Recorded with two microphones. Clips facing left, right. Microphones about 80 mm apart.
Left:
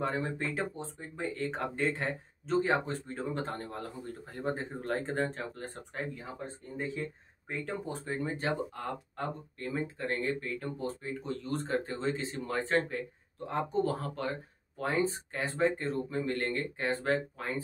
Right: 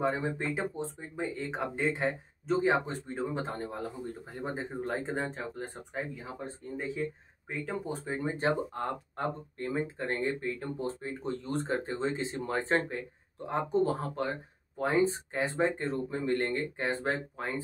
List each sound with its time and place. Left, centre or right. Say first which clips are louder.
0.0 s speech: right 2 dB; centre
7.0 s speech: right 3 dB; centre
8.2 s speech: right 4 dB; right